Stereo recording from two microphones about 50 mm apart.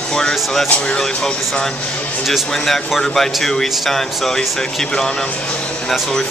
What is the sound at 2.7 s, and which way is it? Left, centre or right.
Speech, centre.